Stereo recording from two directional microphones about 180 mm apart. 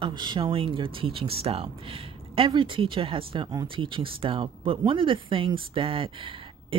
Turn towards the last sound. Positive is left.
turn(degrees=-30)  # may be behind; listen again after turning